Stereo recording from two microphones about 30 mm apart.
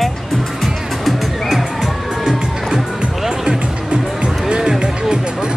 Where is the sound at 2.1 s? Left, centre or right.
Centre.